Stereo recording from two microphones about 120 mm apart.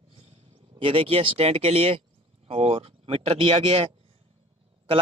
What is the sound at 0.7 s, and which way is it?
Speech, 50° right (ahead or behind).